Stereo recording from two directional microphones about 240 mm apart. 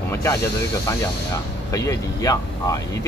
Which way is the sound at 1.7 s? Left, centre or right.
Centre.